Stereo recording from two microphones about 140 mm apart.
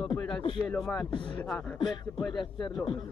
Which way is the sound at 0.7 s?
5° left (ahead or behind).